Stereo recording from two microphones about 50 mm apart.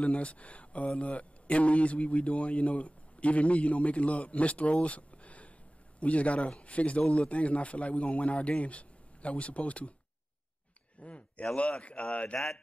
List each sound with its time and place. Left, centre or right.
0.0 s a man's voice: left
11.0 s a man's voice: left